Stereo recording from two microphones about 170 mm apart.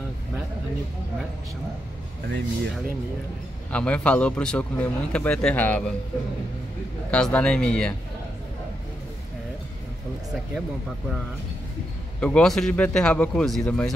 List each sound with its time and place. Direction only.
2.2 s speech: 85° right
3.7 s a man's voice: 5° left (ahead or behind)
7.1 s speech: 5° left (ahead or behind)
12.2 s speech: 5° left (ahead or behind)